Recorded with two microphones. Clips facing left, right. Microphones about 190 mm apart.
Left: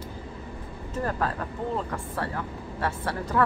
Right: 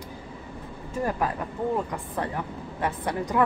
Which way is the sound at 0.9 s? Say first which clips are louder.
Right 1 dB; 10° right (ahead or behind).